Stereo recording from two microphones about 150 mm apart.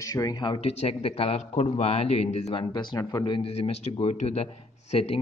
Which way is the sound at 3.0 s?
30° left (ahead or behind).